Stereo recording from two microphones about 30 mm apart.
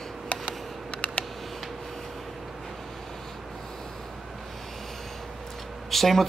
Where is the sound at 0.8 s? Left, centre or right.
Left.